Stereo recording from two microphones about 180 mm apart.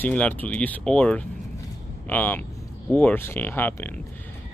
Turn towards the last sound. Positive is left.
turn(degrees=10)  # may be behind; listen again after turning